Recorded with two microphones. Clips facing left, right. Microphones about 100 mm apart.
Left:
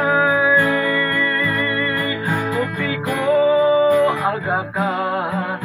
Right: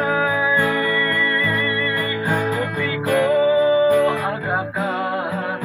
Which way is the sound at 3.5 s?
45° left (ahead or behind).